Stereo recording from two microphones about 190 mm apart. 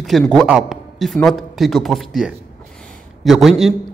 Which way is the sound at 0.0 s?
5° left (ahead or behind).